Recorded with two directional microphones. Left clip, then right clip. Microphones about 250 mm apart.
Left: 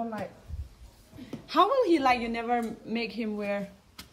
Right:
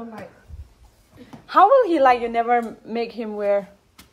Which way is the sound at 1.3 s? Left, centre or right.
Centre.